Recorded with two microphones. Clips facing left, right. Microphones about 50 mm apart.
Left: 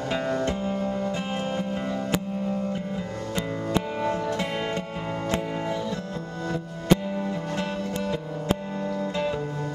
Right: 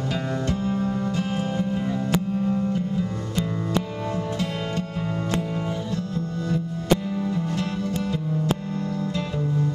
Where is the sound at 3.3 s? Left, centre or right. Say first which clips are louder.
Even; left.